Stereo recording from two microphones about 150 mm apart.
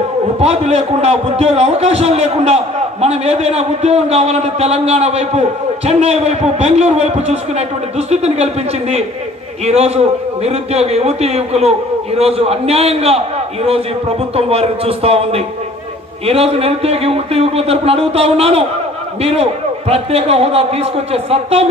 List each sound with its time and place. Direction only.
0.4 s a man's voice: 45° right (ahead or behind)
9.7 s a man's voice: 45° right (ahead or behind)
14.3 s speech: 40° right (ahead or behind)